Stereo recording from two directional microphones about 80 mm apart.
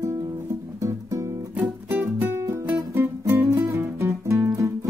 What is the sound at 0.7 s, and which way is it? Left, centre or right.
Music, right.